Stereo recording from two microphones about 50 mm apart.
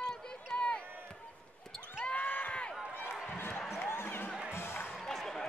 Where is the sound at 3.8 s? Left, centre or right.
Left.